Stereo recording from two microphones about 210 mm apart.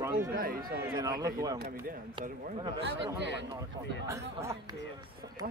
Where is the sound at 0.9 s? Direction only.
20° right (ahead or behind).